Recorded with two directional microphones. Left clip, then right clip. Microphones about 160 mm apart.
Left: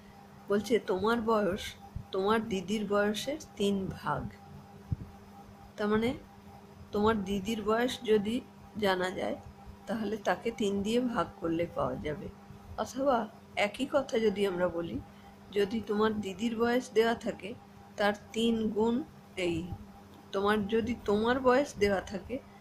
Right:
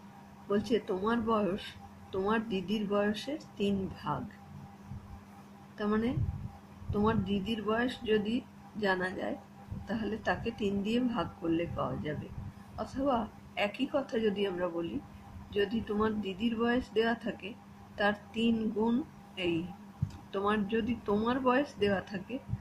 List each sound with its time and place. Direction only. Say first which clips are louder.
0.5 s a woman's voice: left 2 dB; 10° left (ahead or behind)
5.8 s a woman's voice: left 3 dB; 10° left (ahead or behind)
10.6 s a woman's voice: left 2 dB; 70° left (ahead or behind)
11.1 s a woman's voice: left 1 dB; 10° left (ahead or behind)